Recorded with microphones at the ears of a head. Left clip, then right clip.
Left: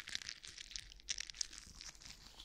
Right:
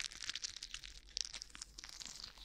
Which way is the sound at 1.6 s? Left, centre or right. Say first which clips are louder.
Right 4 dB; right.